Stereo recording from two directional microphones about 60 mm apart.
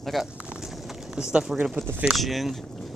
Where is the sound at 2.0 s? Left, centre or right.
Centre.